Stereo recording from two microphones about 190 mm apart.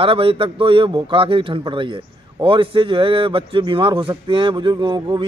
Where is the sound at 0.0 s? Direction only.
30° right (ahead or behind).